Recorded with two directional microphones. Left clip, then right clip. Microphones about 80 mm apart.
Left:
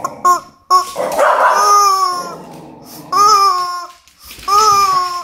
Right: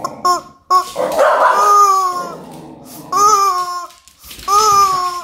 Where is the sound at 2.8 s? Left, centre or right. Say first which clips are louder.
Left 1 dB; right.